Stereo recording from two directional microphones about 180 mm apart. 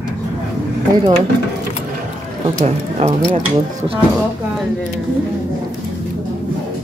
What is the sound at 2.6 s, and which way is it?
Speech, 35° right (ahead or behind).